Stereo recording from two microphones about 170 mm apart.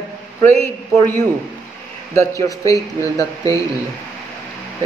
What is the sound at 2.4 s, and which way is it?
A man's voice, 20° left (ahead or behind).